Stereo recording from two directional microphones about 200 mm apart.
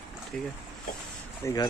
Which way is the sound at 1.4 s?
20° left (ahead or behind).